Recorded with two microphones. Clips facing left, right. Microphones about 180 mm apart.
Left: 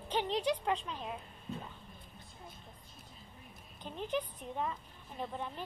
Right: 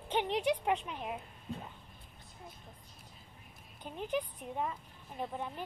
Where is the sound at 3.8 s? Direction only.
10° right (ahead or behind).